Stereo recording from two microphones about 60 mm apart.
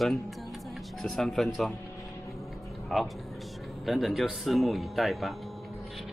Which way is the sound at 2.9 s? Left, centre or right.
Centre.